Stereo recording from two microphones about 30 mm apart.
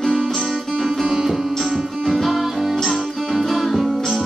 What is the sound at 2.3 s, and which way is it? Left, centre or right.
Music, centre.